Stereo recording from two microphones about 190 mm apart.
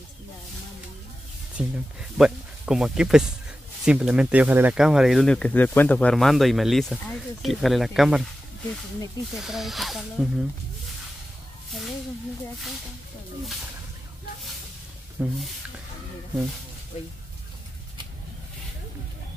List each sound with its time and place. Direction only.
1.6 s speech: 5° right (ahead or behind)
9.3 s speech: centre (ahead or behind)
15.2 s speech: 5° right (ahead or behind)